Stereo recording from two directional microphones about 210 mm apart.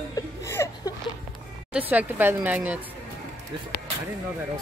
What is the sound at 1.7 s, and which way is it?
A woman's voice, 5° right (ahead or behind).